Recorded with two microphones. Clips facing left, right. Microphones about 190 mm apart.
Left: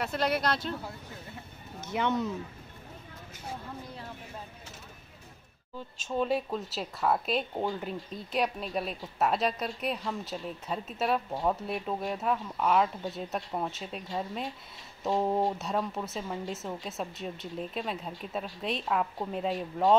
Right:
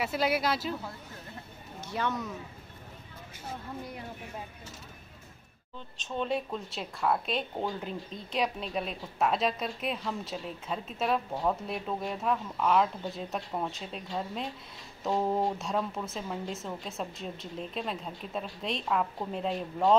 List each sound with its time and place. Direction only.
0.0 s speech: 5° right (ahead or behind)
1.8 s speech: 20° left (ahead or behind)
5.9 s speech: 5° left (ahead or behind)